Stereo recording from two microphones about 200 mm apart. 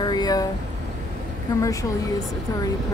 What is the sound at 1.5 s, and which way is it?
Speech, 20° left (ahead or behind).